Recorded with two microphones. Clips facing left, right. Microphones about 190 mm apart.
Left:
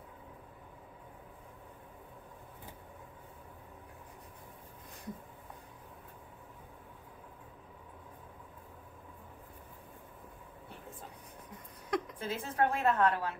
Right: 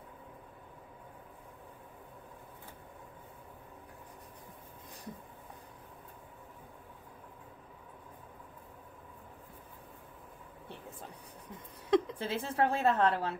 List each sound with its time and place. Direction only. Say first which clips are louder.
11.9 s a woman's voice: right 6 dB; 30° right (ahead or behind)